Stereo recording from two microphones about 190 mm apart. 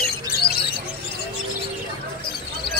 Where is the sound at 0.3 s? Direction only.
55° left (ahead or behind).